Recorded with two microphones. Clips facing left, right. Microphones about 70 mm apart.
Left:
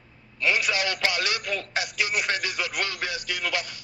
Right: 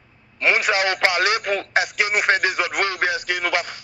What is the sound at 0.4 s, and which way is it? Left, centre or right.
Speech, right.